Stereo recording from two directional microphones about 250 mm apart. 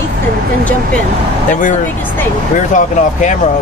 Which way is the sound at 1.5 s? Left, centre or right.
Left.